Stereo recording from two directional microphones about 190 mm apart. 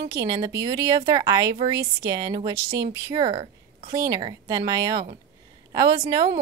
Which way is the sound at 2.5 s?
55° right (ahead or behind).